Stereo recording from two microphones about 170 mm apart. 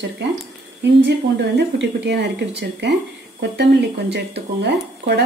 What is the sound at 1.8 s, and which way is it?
Speech, 90° right.